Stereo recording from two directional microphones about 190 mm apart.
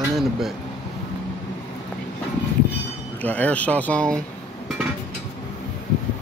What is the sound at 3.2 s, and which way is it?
Speech, 5° left (ahead or behind).